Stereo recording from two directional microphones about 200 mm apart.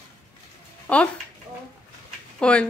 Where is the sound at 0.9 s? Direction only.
5° left (ahead or behind).